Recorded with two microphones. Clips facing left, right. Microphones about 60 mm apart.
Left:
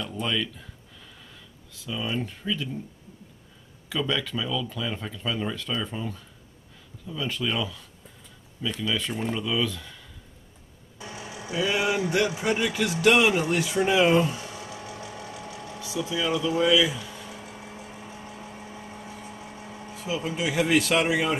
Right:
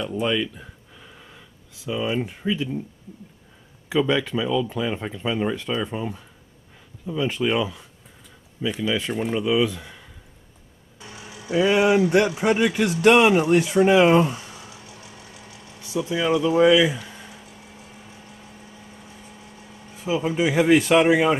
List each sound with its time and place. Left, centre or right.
0.0 s a sound: right
1.9 s speech: right
3.9 s speech: right
11.2 s vehicle: centre
11.5 s speech: right
14.7 s sewing machine: left
15.8 s speech: right
16.2 s speech: right
20.1 s speech: right